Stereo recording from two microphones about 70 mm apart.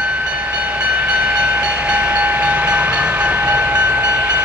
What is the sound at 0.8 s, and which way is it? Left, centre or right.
Train, centre.